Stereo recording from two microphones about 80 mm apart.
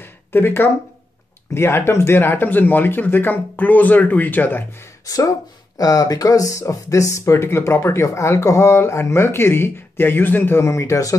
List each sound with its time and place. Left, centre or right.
0.0 s a sound: left
1.5 s speech: left
5.0 s speech: left